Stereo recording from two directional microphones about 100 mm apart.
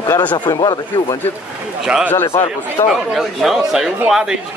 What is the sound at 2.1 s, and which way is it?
Speech, 25° left (ahead or behind).